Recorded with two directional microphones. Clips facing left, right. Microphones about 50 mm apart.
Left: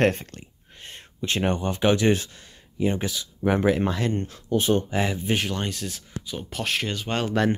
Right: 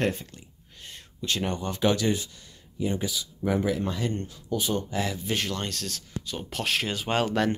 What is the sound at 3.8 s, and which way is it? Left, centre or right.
Speech, left.